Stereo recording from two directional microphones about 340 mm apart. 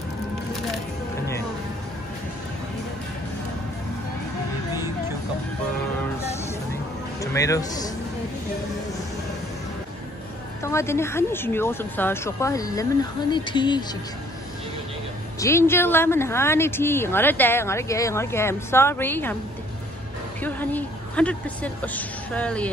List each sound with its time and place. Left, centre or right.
7.2 s speech: centre
10.6 s speech: centre
15.4 s speech: centre
20.4 s a woman's voice: centre